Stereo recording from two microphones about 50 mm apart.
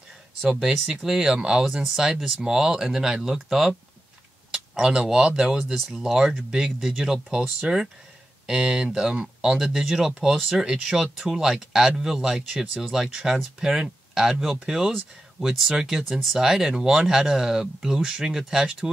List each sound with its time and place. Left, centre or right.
0.4 s speech: centre
4.5 s a sound: centre
5.1 s speech: centre